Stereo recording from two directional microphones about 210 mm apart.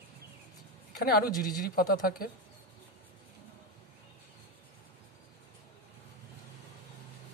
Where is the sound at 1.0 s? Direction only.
45° left (ahead or behind).